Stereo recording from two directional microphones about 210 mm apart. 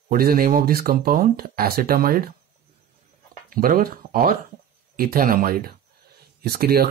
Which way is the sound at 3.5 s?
45° right (ahead or behind).